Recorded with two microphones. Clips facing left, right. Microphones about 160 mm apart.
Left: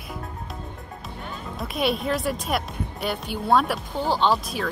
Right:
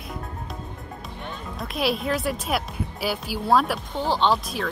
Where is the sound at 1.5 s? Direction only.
Centre (ahead or behind).